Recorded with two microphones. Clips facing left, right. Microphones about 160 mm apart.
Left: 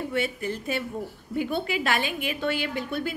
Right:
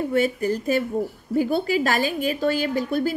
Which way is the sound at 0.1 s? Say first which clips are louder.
Right 7 dB; 40° right (ahead or behind).